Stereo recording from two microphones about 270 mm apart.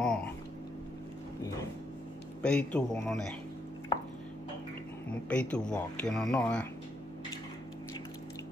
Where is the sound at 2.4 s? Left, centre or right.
Centre.